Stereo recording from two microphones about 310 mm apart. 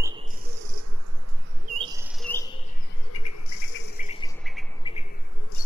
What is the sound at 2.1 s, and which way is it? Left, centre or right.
Cricket, centre.